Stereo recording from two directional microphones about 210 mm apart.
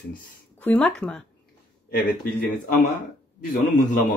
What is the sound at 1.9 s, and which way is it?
Speech, 40° left (ahead or behind).